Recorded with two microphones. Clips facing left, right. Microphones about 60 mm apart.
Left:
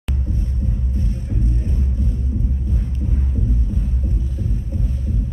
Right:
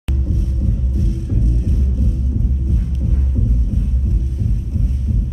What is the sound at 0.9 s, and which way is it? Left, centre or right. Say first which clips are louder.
Music: right 3 dB; left.